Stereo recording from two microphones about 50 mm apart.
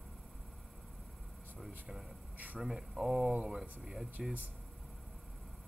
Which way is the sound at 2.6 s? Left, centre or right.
Centre.